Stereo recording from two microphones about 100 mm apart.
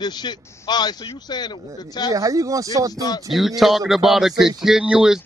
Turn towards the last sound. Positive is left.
turn(degrees=-10)  # may be behind; listen again after turning